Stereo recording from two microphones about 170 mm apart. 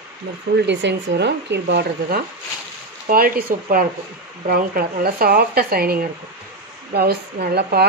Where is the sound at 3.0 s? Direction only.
60° right (ahead or behind).